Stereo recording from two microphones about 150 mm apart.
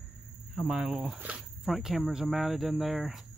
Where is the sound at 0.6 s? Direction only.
Centre (ahead or behind).